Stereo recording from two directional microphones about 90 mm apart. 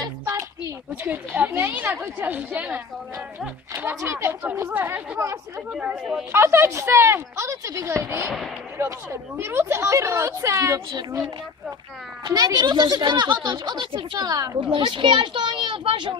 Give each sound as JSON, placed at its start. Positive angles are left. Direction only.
{"t": 1.0, "sound": "a woman's voice", "side_deg": -20}
{"t": 5.7, "sound": "speech", "side_deg": -10}
{"t": 6.3, "sound": "a woman's voice", "side_deg": -30}
{"t": 12.3, "sound": "speech", "side_deg": -45}
{"t": 14.6, "sound": "speech", "side_deg": -70}